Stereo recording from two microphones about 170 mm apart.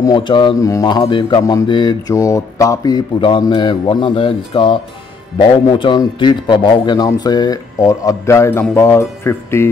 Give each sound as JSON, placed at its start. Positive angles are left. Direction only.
{"t": 0.0, "sound": "speech", "side_deg": 25}